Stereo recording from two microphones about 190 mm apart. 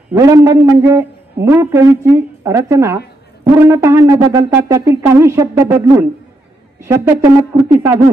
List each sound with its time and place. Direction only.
0.1 s a man's voice: 15° right (ahead or behind)